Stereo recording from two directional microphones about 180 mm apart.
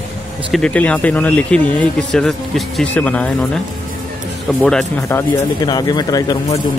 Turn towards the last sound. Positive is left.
turn(degrees=20)  # may be behind; listen again after turning